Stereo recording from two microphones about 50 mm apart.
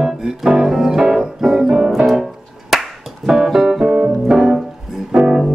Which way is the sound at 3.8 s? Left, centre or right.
Centre.